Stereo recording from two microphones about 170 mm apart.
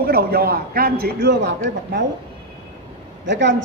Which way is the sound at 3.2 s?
90° right.